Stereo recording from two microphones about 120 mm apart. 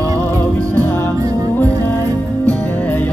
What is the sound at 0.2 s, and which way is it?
Music, 15° left (ahead or behind).